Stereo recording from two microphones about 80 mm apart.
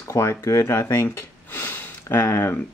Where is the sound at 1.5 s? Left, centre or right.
Left.